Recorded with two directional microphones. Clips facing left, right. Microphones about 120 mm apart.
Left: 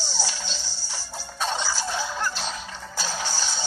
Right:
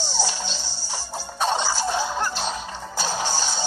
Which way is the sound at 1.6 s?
20° right (ahead or behind).